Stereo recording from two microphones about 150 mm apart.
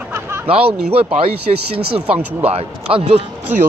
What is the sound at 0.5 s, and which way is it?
Speech, 40° right (ahead or behind).